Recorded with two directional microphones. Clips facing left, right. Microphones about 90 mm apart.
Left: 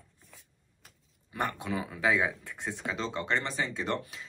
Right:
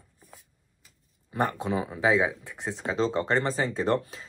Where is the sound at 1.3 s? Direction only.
30° right (ahead or behind).